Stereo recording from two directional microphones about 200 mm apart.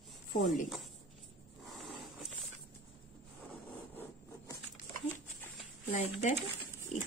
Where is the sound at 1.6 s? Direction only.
Centre (ahead or behind).